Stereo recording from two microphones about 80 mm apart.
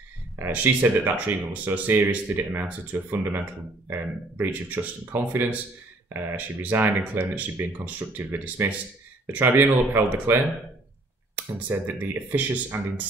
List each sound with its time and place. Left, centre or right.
0.5 s speech: right